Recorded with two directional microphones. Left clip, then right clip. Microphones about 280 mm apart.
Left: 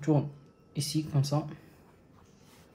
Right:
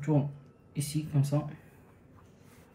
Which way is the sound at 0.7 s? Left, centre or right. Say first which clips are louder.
Left 3 dB; left.